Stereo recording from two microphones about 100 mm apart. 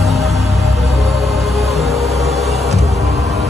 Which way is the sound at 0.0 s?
Centre (ahead or behind).